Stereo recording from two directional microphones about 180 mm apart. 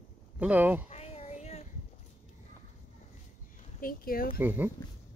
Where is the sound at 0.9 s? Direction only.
35° left (ahead or behind).